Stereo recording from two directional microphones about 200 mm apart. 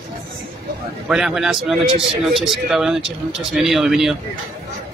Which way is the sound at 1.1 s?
Centre (ahead or behind).